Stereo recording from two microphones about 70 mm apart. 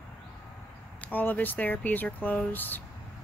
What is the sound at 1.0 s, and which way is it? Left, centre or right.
Speech, left.